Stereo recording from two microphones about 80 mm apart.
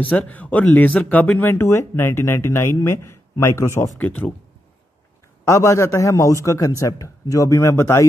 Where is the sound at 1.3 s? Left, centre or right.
Left.